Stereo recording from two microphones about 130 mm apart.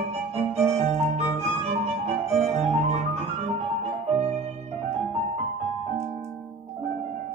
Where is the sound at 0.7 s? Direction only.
55° right (ahead or behind).